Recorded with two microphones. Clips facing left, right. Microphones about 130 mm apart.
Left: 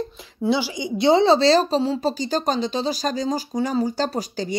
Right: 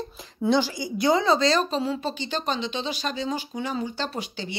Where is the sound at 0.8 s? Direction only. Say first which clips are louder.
Left 5 dB; 25° left (ahead or behind).